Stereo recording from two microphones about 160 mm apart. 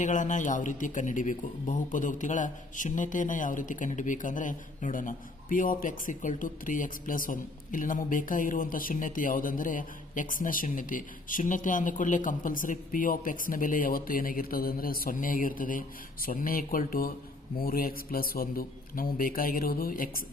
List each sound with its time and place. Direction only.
0.0 s a man's voice: 50° left (ahead or behind)